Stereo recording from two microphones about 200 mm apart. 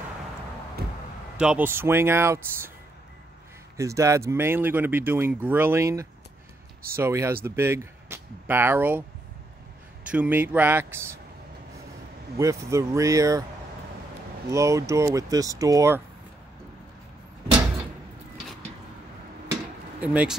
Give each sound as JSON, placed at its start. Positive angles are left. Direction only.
{"t": 1.4, "sound": "speech", "side_deg": -5}
{"t": 3.7, "sound": "speech", "side_deg": -15}
{"t": 10.1, "sound": "speech", "side_deg": -10}
{"t": 12.4, "sound": "speech", "side_deg": -15}
{"t": 14.5, "sound": "speech", "side_deg": -15}
{"t": 20.0, "sound": "speech", "side_deg": -5}